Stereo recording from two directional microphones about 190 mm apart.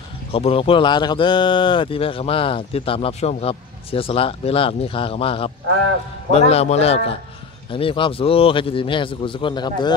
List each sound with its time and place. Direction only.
0.3 s a man's voice: 30° left (ahead or behind)